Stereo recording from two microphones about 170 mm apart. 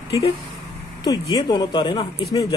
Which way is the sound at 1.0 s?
25° left (ahead or behind).